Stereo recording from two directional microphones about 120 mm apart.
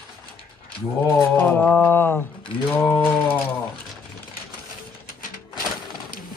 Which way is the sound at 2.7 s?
20° left (ahead or behind).